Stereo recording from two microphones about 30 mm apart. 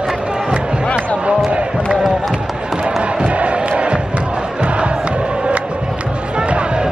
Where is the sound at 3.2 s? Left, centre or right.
Right.